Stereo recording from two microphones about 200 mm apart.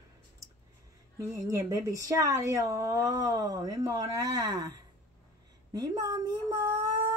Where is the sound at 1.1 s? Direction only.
15° right (ahead or behind).